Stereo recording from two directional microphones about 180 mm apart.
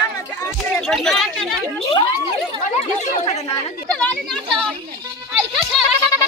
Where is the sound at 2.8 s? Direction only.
35° left (ahead or behind).